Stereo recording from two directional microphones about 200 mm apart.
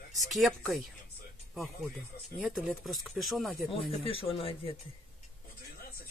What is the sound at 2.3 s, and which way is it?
Speech, centre (ahead or behind).